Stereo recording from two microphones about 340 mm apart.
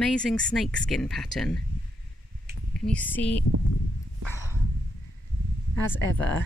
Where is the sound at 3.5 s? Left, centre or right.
Right.